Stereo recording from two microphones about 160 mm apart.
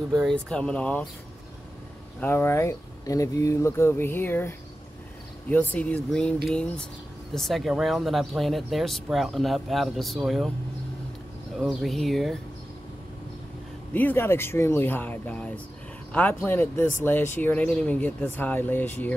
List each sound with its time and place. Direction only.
0.2 s speech: 5° left (ahead or behind)
2.1 s speech: 15° left (ahead or behind)
11.5 s speech: centre (ahead or behind)
13.9 s speech: 10° left (ahead or behind)